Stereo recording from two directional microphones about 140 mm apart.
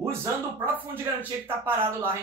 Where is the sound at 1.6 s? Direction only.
15° right (ahead or behind).